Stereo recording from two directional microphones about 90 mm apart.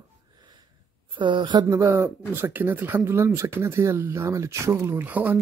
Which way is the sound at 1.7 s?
35° right (ahead or behind).